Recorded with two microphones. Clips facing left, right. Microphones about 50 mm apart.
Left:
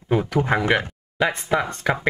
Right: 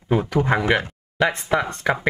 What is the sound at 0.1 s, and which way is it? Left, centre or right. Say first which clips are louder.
Speech: right 1 dB; centre.